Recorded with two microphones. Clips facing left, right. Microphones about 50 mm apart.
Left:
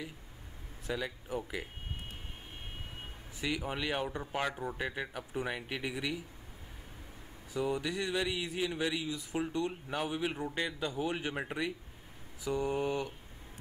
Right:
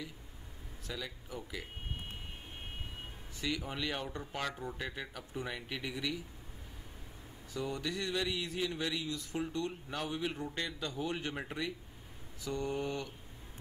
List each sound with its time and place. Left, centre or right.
0.8 s speech: left
3.3 s speech: centre
7.5 s speech: centre